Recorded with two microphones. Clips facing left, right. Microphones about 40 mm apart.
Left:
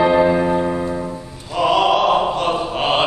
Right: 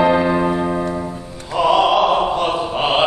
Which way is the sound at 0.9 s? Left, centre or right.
Centre.